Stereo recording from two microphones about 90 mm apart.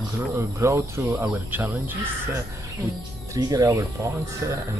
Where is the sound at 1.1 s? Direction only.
20° right (ahead or behind).